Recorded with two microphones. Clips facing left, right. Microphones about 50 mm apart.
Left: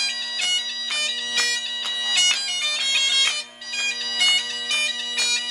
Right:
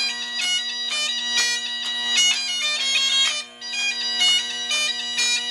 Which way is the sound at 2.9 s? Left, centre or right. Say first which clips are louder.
Left 1 dB; centre.